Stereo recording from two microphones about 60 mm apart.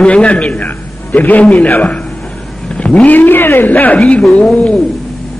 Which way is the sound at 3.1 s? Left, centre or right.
Left.